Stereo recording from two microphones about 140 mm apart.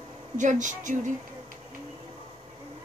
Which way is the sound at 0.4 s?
65° right (ahead or behind).